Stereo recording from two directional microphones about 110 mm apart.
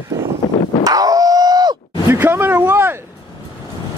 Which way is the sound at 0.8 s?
35° right (ahead or behind).